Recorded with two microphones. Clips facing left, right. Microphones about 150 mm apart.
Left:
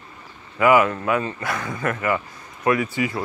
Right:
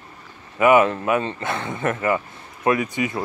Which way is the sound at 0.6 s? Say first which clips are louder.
Right 1 dB; 25° right (ahead or behind).